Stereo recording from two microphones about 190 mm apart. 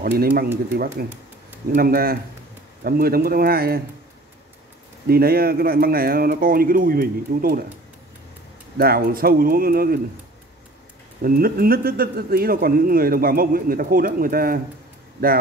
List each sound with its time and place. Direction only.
0.0 s speech: 50° right (ahead or behind)
1.1 s a sound: 10° right (ahead or behind)
1.8 s speech: 50° right (ahead or behind)
5.0 s speech: 55° right (ahead or behind)
8.7 s speech: 50° right (ahead or behind)
11.2 s speech: 50° right (ahead or behind)